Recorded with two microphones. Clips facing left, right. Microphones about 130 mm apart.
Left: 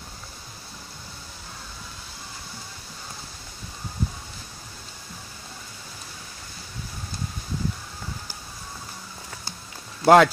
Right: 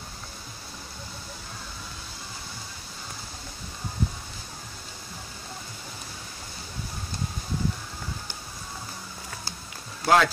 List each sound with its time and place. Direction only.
10.0 s speech: 55° left (ahead or behind)